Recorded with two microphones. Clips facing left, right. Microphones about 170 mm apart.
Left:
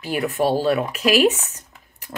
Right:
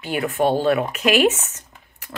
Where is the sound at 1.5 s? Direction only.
35° left (ahead or behind).